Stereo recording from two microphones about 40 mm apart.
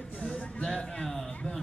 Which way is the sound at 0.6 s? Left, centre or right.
Centre.